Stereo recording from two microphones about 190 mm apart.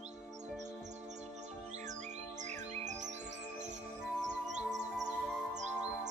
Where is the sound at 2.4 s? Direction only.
40° right (ahead or behind).